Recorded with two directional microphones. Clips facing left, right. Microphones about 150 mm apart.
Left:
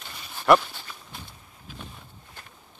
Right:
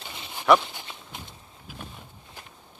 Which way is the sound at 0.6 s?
20° right (ahead or behind).